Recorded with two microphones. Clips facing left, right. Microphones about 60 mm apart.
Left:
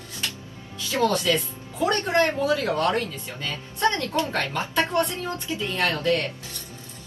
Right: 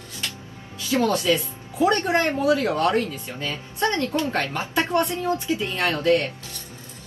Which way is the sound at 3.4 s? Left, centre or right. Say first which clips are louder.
Left 1 dB; right.